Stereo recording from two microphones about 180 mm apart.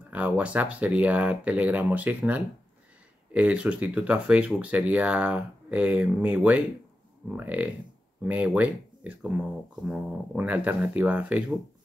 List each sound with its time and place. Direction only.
0.1 s speech: 10° right (ahead or behind)